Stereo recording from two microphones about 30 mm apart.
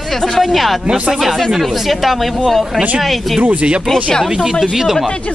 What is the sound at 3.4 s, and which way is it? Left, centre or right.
Speech, right.